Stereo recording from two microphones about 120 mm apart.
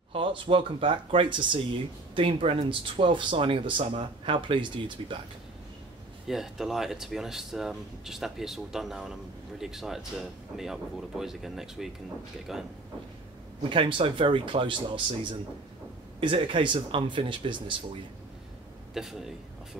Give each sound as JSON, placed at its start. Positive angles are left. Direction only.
{"t": 0.1, "sound": "speech", "side_deg": -45}
{"t": 6.2, "sound": "speech", "side_deg": -5}
{"t": 13.7, "sound": "speech", "side_deg": -45}
{"t": 18.9, "sound": "speech", "side_deg": -5}